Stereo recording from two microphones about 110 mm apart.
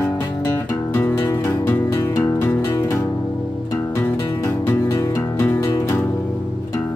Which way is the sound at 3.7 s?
25° left (ahead or behind).